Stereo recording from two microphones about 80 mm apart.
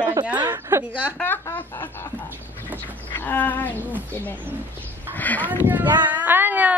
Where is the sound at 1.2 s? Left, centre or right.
Left.